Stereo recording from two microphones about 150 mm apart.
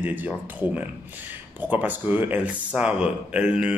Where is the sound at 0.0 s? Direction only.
10° right (ahead or behind).